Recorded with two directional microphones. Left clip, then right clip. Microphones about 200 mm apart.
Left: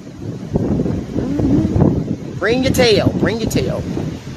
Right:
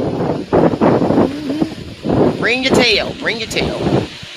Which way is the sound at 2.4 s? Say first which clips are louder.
Left 3 dB; 25° left (ahead or behind).